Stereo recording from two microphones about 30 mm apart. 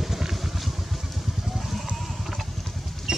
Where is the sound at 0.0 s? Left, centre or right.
Centre.